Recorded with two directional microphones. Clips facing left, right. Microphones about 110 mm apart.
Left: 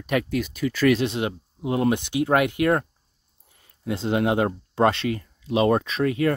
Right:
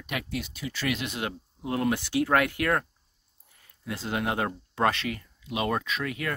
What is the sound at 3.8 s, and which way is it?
Speech, 25° left (ahead or behind).